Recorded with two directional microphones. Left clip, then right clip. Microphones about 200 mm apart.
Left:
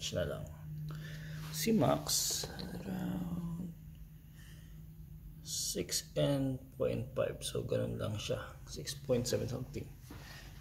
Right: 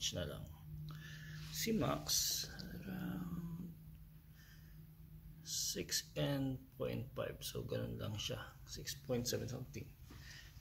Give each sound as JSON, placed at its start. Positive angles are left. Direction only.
{"t": 0.0, "sound": "a sound", "side_deg": 0}
{"t": 0.9, "sound": "whispering", "side_deg": 10}
{"t": 5.5, "sound": "speech", "side_deg": 0}